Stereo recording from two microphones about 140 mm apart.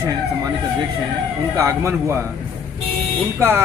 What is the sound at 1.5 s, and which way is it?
Speech, 20° right (ahead or behind).